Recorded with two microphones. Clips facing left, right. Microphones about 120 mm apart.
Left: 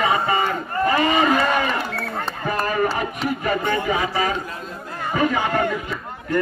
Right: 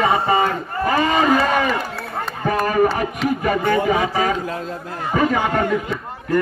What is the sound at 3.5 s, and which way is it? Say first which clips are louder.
A man's voice: right 4 dB; 45° right (ahead or behind).